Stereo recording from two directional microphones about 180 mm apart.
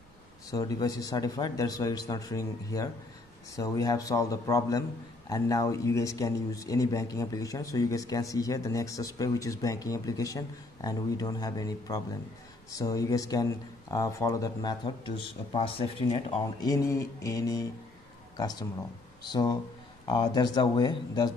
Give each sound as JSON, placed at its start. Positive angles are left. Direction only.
{"t": 0.5, "sound": "speech", "side_deg": 20}
{"t": 16.6, "sound": "mantra", "side_deg": 20}
{"t": 18.3, "sound": "speech", "side_deg": 20}